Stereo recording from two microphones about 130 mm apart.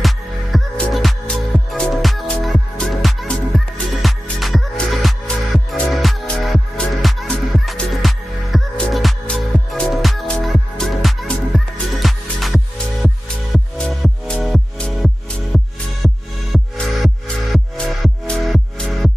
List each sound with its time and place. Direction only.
0.0 s music: centre (ahead or behind)